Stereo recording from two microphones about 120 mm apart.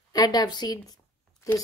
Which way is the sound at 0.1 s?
30° left (ahead or behind).